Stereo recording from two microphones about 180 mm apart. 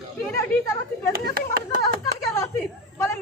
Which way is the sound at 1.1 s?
60° right (ahead or behind).